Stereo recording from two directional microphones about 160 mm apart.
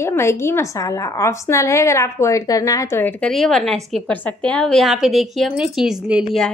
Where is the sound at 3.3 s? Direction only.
Centre (ahead or behind).